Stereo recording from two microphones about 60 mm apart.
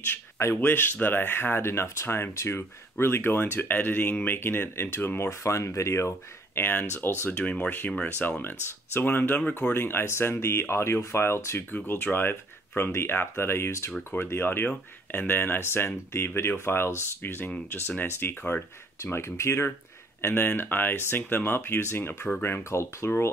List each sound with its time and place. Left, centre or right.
0.6 s speech: left
6.6 s speech: left
11.7 s speech: left
20.2 s speech: left